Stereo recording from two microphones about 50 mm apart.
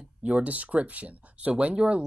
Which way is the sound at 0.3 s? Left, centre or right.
Right.